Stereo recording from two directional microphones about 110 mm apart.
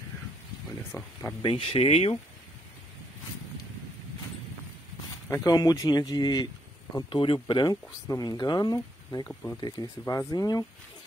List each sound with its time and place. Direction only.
1.0 s speech: 30° left (ahead or behind)
1.4 s speech: 60° left (ahead or behind)
5.3 s speech: 35° left (ahead or behind)
7.1 s speech: 50° left (ahead or behind)